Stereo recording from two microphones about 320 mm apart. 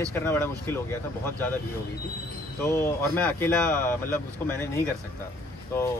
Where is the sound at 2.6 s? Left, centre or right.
Centre.